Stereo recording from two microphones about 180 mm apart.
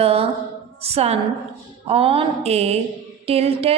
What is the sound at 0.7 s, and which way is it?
A woman's voice, 35° right (ahead or behind).